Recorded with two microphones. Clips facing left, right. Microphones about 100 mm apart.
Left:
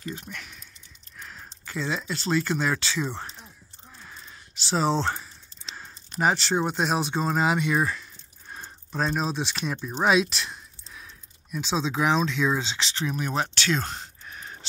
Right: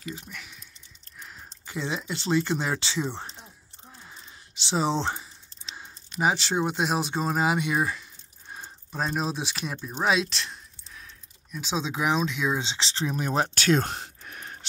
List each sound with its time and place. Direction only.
0.1 s speech: centre (ahead or behind)
1.7 s speech: 15° right (ahead or behind)
3.2 s a sound: 20° right (ahead or behind)
6.2 s speech: 10° right (ahead or behind); by 11.1 s 10° left (ahead or behind)
11.6 s speech: 10° right (ahead or behind)
12.6 s speech: 25° right (ahead or behind); by 14.0 s 50° right (ahead or behind)
14.0 s a sound: 55° right (ahead or behind)